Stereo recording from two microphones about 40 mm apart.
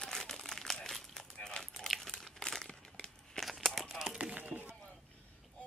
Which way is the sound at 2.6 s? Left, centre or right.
Centre.